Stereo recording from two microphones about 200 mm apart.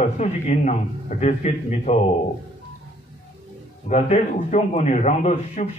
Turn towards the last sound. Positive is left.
turn(degrees=35)  # may be behind; listen again after turning